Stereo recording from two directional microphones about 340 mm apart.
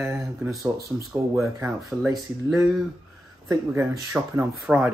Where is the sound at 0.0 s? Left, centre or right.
Centre.